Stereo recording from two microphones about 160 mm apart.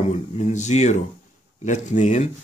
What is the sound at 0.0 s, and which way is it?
Speech, 50° left (ahead or behind).